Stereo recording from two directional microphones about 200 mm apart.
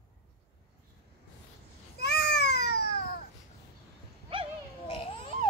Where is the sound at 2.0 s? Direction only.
55° left (ahead or behind).